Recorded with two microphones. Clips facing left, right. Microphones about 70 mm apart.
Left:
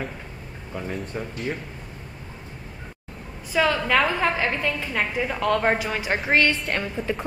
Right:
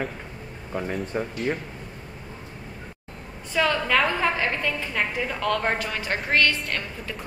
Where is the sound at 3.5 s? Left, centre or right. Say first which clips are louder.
Left 1 dB; centre.